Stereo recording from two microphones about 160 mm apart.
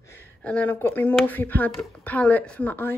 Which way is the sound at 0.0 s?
15° left (ahead or behind).